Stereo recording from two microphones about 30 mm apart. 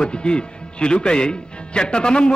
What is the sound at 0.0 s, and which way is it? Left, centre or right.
A man's voice, left.